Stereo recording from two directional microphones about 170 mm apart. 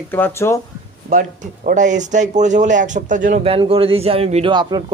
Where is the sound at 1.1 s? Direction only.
50° right (ahead or behind).